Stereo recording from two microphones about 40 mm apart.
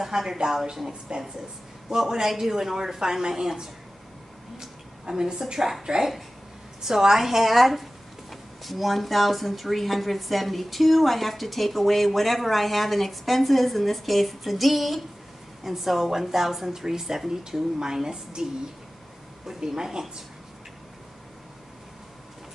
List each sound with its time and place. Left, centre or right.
0.0 s a woman's voice: centre